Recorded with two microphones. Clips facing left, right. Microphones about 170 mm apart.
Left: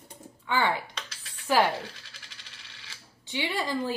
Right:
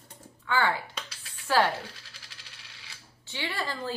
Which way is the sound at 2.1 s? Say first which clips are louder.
Left 1 dB; 5° right (ahead or behind).